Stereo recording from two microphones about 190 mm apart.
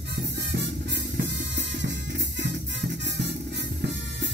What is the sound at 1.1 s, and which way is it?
Music, 70° right (ahead or behind).